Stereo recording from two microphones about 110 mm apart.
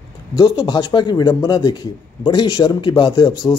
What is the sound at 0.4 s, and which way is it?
A man's voice, 40° left (ahead or behind).